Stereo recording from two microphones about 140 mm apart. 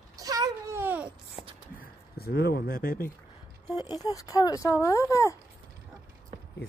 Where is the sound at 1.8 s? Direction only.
90° left.